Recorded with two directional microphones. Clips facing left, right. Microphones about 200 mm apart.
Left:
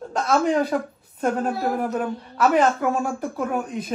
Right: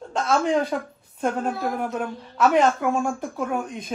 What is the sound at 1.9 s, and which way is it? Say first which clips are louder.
Speech: left 3 dB; 5° left (ahead or behind).